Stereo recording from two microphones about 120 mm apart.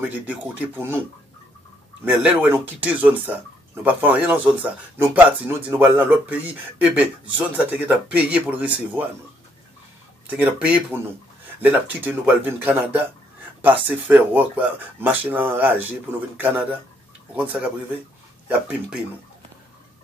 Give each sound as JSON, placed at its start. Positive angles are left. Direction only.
{"t": 0.3, "sound": "speech", "side_deg": -15}
{"t": 2.0, "sound": "speech", "side_deg": -15}
{"t": 10.2, "sound": "speech", "side_deg": -15}